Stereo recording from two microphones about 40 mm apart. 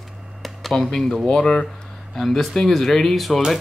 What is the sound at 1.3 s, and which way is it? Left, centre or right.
Speech, left.